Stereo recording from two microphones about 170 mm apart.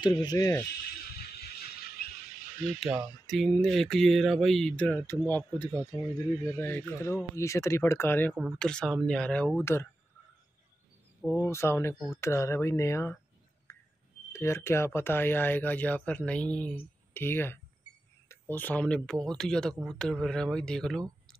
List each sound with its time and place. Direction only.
0.0 s speech: 25° left (ahead or behind)
1.0 s a sound: 70° left (ahead or behind)
2.6 s speech: centre (ahead or behind)
11.2 s speech: 15° left (ahead or behind)
13.7 s a sound: 15° left (ahead or behind)
14.3 s speech: 15° left (ahead or behind)